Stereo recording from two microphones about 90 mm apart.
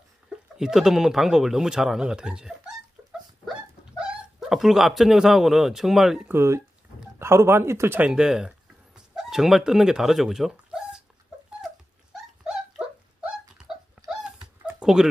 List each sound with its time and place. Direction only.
0.6 s speech: 5° right (ahead or behind)
4.0 s speech: 5° right (ahead or behind)
6.2 s speech: 30° right (ahead or behind)
8.0 s speech: 10° right (ahead or behind)
11.6 s dog: 5° right (ahead or behind)
14.8 s a sound: 5° right (ahead or behind)